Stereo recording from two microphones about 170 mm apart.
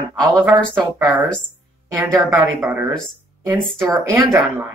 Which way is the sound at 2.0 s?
15° right (ahead or behind).